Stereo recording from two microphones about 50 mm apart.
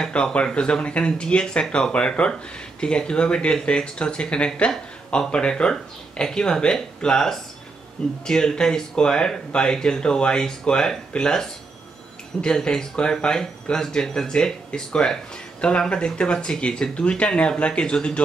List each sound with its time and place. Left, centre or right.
0.1 s speech: left